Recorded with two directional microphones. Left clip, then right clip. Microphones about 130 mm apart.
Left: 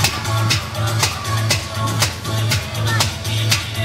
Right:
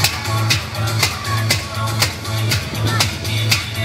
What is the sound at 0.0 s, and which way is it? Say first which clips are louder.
Music: even; 5° left (ahead or behind).